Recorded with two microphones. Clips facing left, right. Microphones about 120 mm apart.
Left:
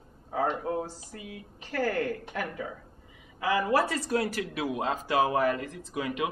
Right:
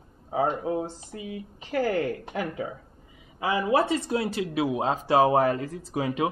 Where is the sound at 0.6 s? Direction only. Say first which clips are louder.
Right 3 dB; 20° right (ahead or behind).